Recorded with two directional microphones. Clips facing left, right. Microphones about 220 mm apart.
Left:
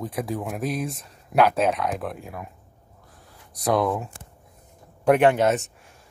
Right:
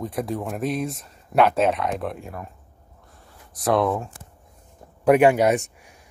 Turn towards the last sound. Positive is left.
turn(degrees=-15)  # may be behind; listen again after turning